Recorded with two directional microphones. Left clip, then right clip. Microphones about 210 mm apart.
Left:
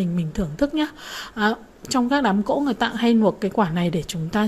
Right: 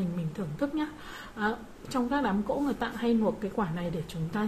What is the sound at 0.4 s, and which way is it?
A woman's voice, 35° left (ahead or behind).